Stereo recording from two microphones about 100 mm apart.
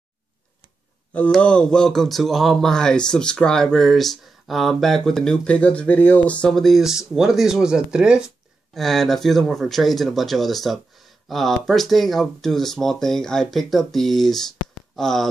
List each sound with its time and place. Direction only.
1.4 s speech: 10° left (ahead or behind); by 8.3 s 10° right (ahead or behind)
8.7 s speech: centre (ahead or behind)